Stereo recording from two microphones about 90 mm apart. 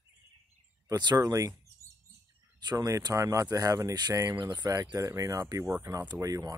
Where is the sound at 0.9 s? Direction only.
50° right (ahead or behind).